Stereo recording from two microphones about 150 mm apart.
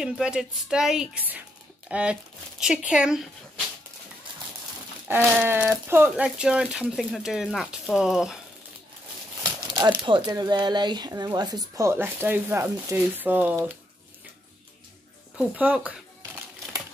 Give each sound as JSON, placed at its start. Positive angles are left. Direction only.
{"t": 0.0, "sound": "speech", "side_deg": -5}
{"t": 5.0, "sound": "speech", "side_deg": -10}
{"t": 9.4, "sound": "speech", "side_deg": -30}
{"t": 15.3, "sound": "speech", "side_deg": -10}